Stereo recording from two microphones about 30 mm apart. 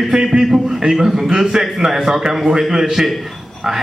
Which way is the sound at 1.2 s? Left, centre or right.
Right.